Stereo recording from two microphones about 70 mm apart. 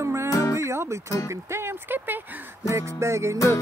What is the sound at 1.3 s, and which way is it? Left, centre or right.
Speech, right.